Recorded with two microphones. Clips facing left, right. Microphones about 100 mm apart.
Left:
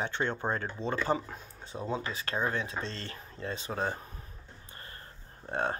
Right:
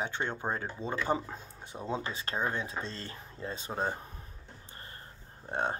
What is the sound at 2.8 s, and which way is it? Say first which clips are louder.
Speech: left 2 dB; 10° right (ahead or behind).